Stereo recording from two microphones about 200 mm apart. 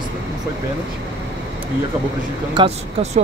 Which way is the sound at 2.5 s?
25° right (ahead or behind).